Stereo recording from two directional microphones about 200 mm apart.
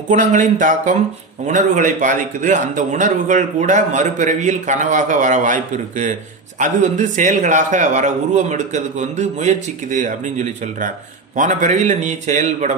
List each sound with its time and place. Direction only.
0.1 s a man's voice: 40° right (ahead or behind)